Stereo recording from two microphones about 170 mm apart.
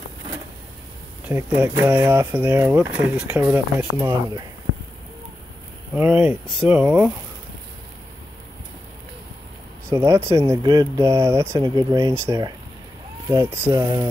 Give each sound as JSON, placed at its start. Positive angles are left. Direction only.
{"t": 1.3, "sound": "speech", "side_deg": -15}
{"t": 4.7, "sound": "a sound", "side_deg": -65}
{"t": 5.9, "sound": "speech", "side_deg": -10}
{"t": 9.8, "sound": "speech", "side_deg": -15}